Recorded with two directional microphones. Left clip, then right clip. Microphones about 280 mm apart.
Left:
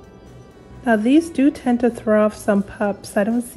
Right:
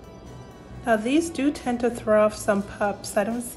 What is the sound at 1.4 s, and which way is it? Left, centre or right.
A woman's voice, left.